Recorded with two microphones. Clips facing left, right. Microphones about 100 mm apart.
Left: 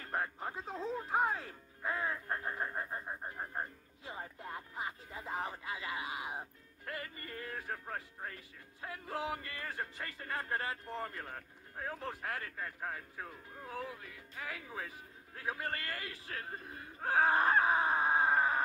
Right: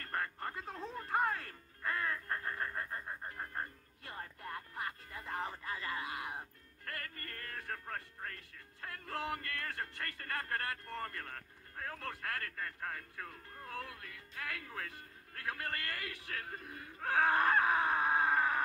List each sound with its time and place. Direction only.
0.1 s music: 10° left (ahead or behind)
0.9 s speech: 10° left (ahead or behind)
15.7 s speech: 25° left (ahead or behind)